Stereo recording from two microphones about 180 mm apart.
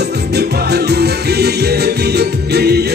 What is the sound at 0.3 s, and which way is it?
Music, 65° right (ahead or behind).